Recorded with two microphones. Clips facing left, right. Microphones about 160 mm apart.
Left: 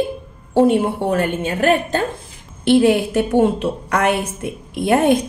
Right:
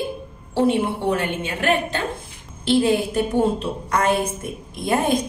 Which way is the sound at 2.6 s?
65° left (ahead or behind).